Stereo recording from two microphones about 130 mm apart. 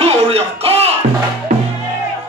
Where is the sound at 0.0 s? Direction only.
50° right (ahead or behind).